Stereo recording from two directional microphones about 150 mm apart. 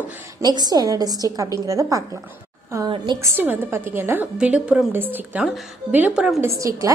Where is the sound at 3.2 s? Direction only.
15° right (ahead or behind).